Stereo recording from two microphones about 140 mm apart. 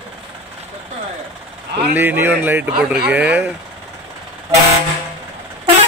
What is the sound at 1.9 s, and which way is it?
Speech, 15° right (ahead or behind).